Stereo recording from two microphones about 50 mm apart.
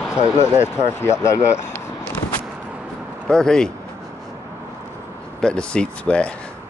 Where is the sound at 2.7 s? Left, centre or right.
Centre.